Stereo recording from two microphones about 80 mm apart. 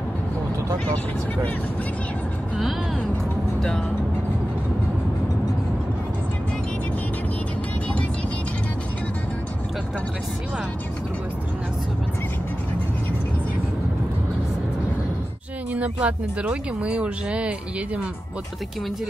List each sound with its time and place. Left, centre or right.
15.7 s speech: centre